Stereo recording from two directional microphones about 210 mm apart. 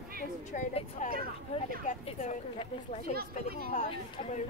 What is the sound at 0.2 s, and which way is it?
A woman's voice, 35° left (ahead or behind).